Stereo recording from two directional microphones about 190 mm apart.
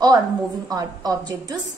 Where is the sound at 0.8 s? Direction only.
20° right (ahead or behind).